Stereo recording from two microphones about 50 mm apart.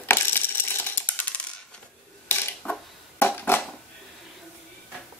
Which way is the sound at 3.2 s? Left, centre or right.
Left.